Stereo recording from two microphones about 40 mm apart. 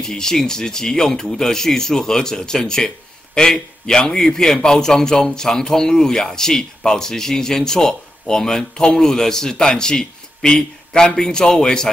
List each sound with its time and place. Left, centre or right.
0.0 s a man's voice: centre